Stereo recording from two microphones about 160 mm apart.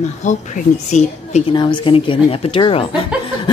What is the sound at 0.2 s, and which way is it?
Speech, 50° left (ahead or behind).